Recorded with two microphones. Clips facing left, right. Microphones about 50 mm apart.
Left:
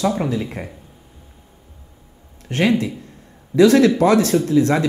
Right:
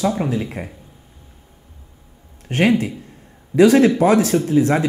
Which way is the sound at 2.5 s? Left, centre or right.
Right.